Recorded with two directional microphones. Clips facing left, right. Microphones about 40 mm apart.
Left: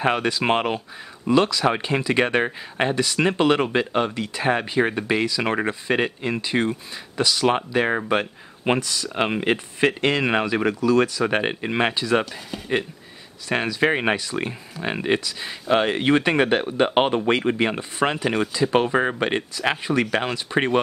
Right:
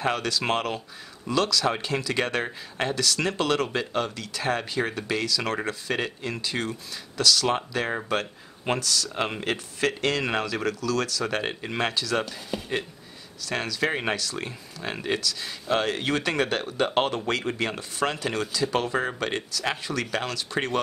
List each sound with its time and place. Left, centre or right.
0.0 s speech: left
13.5 s speech: left